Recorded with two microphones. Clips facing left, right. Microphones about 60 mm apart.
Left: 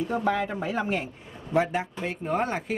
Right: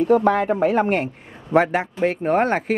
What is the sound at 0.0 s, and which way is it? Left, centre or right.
Speech, right.